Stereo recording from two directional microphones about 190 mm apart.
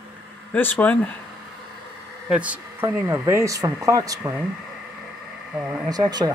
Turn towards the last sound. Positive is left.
turn(degrees=-20)  # may be behind; listen again after turning